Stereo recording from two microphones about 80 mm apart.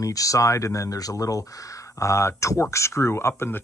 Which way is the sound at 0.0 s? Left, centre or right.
Left.